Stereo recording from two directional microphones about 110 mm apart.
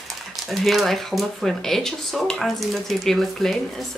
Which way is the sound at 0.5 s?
Centre (ahead or behind).